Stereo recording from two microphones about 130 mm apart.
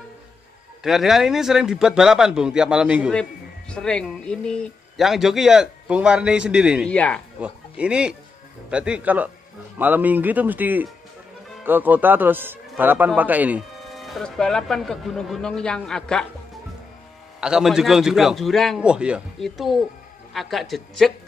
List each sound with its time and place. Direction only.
0.8 s speech: centre (ahead or behind)
3.1 s speech: 5° left (ahead or behind)
6.9 s speech: 10° left (ahead or behind)
7.3 s a man's voice: 10° right (ahead or behind)
13.9 s speech: centre (ahead or behind)
17.4 s speech: 5° right (ahead or behind)